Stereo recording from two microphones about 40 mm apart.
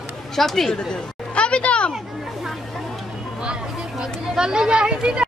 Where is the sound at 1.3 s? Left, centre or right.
Left.